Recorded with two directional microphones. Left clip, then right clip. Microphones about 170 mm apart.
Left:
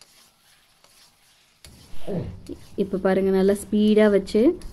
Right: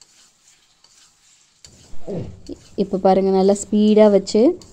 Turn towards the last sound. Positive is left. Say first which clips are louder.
# right 4 dB
turn(degrees=-20)  # may be behind; listen again after turning